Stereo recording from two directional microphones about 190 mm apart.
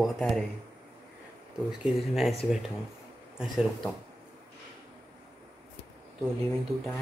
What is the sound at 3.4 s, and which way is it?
Speech, centre (ahead or behind).